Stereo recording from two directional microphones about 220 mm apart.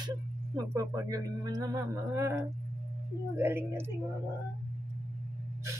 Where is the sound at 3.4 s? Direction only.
10° right (ahead or behind).